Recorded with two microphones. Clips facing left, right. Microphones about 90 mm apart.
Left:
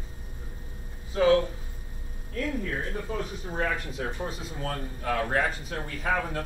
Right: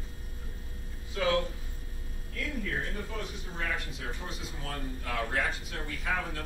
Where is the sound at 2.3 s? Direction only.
35° left (ahead or behind).